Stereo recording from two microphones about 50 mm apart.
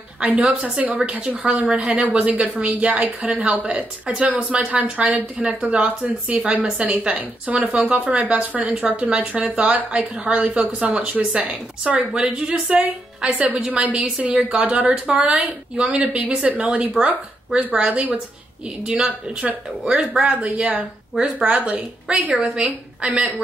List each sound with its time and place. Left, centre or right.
0.5 s speech: right
1.2 s a woman's voice: right
14.5 s a woman's voice: centre
22.6 s a woman's voice: centre